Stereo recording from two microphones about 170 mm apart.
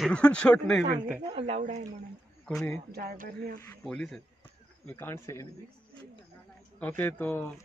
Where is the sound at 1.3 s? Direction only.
40° right (ahead or behind).